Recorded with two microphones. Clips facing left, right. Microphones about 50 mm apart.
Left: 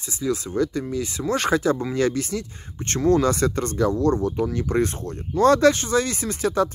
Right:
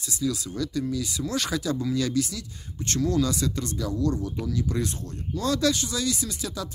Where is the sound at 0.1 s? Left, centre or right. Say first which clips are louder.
Left 4 dB; left.